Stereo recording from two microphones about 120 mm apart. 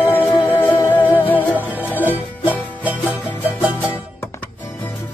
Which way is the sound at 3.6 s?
10° right (ahead or behind).